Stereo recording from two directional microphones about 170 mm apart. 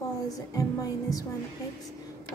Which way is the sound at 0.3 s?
20° left (ahead or behind).